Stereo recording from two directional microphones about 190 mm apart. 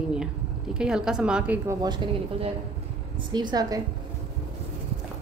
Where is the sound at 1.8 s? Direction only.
25° right (ahead or behind).